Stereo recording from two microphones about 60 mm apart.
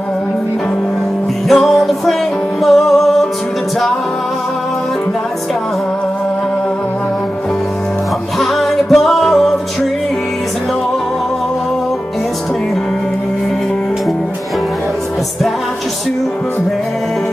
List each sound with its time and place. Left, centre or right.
1.5 s music: centre
8.4 s music: centre